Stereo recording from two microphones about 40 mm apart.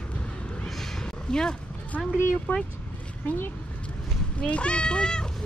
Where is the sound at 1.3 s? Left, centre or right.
Centre.